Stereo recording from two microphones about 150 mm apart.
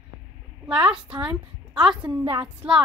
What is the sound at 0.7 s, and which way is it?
A woman's voice, 5° right (ahead or behind).